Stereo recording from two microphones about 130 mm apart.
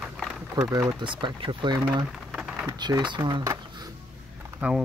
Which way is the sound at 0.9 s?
40° right (ahead or behind).